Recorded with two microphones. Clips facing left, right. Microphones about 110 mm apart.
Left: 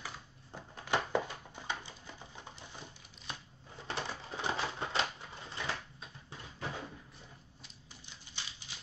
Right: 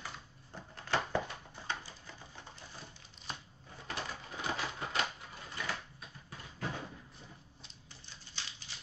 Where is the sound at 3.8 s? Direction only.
30° left (ahead or behind).